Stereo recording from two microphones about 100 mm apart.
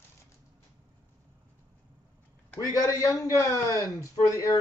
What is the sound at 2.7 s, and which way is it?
A man's voice, 35° left (ahead or behind).